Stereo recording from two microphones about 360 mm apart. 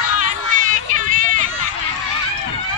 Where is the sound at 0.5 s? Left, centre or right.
Right.